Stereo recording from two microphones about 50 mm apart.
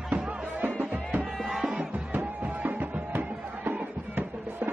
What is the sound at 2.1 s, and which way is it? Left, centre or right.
Music, right.